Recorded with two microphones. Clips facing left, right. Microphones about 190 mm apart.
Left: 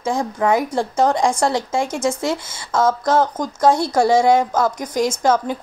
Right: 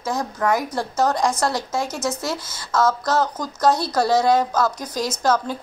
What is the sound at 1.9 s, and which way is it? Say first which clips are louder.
Speech: left 5 dB; 50° left (ahead or behind).